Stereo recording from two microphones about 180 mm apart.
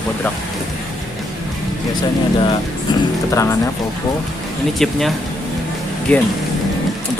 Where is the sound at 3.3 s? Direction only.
15° left (ahead or behind).